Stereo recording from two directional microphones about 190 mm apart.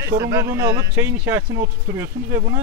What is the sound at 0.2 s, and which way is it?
Speech, 15° right (ahead or behind).